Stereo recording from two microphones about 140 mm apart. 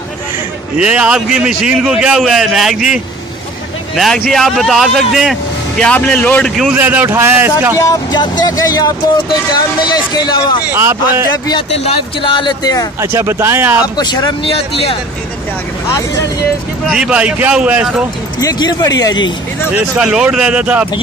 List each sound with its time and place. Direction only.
0.7 s a man's voice: 10° right (ahead or behind)
6.7 s a man's voice: 15° right (ahead or behind)
7.8 s speech: 30° left (ahead or behind)
10.7 s speech: 20° right (ahead or behind)
11.7 s speech: 40° left (ahead or behind)
13.0 s a man's voice: 20° right (ahead or behind)
13.9 s speech: 30° left (ahead or behind)
14.5 s speech: 45° left (ahead or behind)
16.8 s a man's voice: 5° right (ahead or behind)
18.4 s speech: 25° left (ahead or behind)
19.7 s a man's voice: 5° right (ahead or behind)